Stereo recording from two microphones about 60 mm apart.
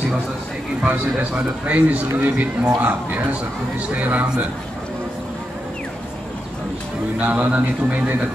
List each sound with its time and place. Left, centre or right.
0.8 s a man's voice: right
7.2 s a man's voice: right